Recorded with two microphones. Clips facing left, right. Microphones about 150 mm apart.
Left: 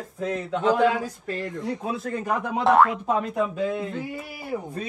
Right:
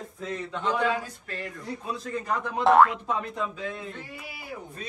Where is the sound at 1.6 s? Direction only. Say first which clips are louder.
Left 5 dB; 65° left (ahead or behind).